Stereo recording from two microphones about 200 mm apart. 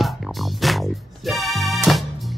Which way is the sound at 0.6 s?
Centre (ahead or behind).